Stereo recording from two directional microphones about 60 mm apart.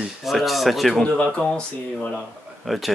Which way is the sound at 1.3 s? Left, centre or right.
Centre.